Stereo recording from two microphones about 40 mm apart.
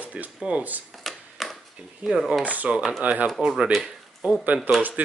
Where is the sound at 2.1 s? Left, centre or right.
Right.